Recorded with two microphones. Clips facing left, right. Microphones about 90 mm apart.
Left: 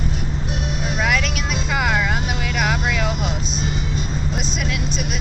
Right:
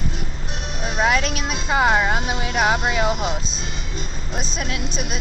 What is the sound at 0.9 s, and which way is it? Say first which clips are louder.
Vehicle: right 3 dB; 35° right (ahead or behind).